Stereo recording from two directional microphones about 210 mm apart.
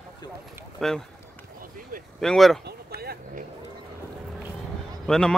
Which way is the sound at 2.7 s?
45° right (ahead or behind).